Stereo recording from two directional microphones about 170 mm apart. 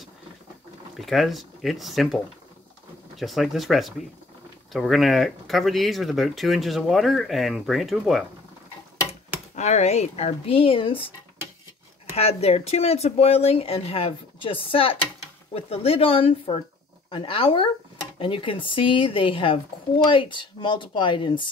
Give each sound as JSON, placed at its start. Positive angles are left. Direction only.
{"t": 0.9, "sound": "speech", "side_deg": 0}
{"t": 3.2, "sound": "speech", "side_deg": 0}
{"t": 9.6, "sound": "speech", "side_deg": 45}
{"t": 12.2, "sound": "speech", "side_deg": 35}